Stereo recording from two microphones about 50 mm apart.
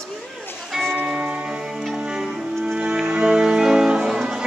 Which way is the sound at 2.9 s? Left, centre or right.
Centre.